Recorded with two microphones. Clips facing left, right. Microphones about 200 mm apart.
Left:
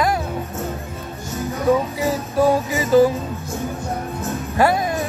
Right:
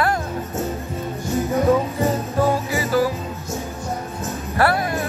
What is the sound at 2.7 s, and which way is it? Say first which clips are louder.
Music: left 5 dB; 20° left (ahead or behind).